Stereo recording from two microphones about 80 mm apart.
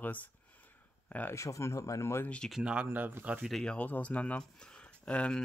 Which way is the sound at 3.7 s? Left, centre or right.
Centre.